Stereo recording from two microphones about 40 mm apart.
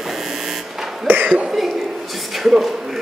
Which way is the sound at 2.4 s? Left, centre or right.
Centre.